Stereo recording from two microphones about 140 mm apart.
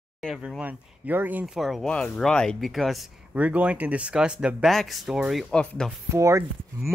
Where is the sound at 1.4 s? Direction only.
Centre (ahead or behind).